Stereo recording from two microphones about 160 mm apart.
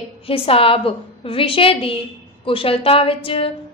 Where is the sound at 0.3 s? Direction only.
35° left (ahead or behind).